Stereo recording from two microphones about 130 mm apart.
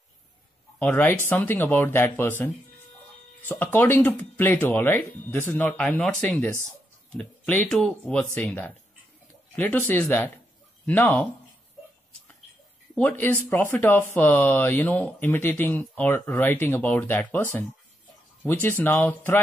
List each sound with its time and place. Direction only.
0.7 s speech: 15° left (ahead or behind)
12.9 s speech: 15° left (ahead or behind)